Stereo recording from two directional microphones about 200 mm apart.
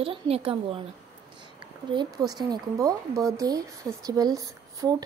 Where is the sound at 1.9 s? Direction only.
20° right (ahead or behind).